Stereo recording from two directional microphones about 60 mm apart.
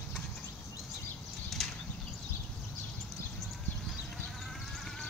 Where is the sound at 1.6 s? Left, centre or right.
Centre.